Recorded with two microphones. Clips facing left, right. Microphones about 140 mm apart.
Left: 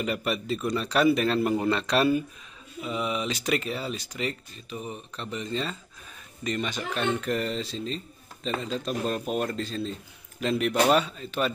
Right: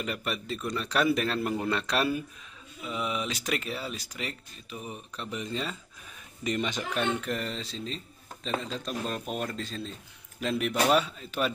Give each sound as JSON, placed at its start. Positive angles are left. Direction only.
{"t": 0.0, "sound": "speech", "side_deg": 5}
{"t": 7.2, "sound": "speech", "side_deg": 0}
{"t": 8.8, "sound": "speech", "side_deg": 45}
{"t": 9.6, "sound": "speech", "side_deg": 0}